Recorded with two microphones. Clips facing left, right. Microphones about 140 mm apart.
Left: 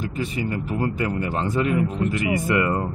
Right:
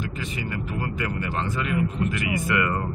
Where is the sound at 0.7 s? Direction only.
30° left (ahead or behind).